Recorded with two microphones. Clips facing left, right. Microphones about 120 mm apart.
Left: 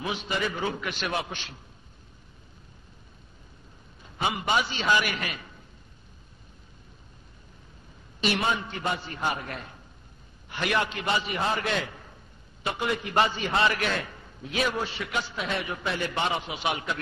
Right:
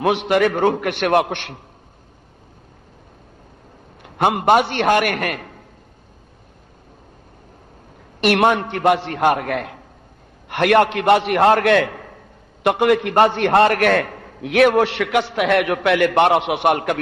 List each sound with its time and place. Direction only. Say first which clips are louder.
0.0 s a man's voice: right 14 dB; 70° right (ahead or behind)
4.0 s a man's voice: right 11 dB; 60° right (ahead or behind)
8.2 s a man's voice: right 11 dB; 65° right (ahead or behind)
10.5 s a man's voice: right 13 dB; 65° right (ahead or behind)